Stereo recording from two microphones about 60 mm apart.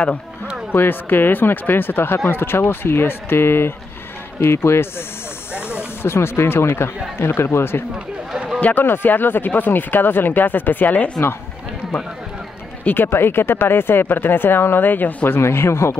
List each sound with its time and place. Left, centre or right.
0.7 s speech: left
12.8 s speech: left
15.3 s speech: left